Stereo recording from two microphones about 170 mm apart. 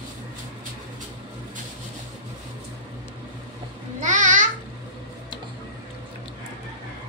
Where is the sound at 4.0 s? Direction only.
45° right (ahead or behind).